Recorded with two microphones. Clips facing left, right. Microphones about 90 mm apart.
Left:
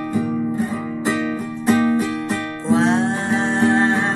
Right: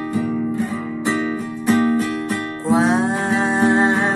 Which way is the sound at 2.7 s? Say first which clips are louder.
Even; 10° right (ahead or behind).